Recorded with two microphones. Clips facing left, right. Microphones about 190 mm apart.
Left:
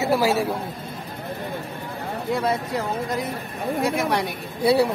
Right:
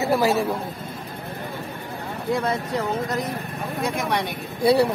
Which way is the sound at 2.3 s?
10° left (ahead or behind).